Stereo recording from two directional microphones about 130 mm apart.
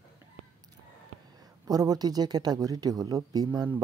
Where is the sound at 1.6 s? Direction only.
30° right (ahead or behind).